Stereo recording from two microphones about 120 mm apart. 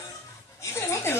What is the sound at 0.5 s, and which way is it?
Speech, 20° left (ahead or behind).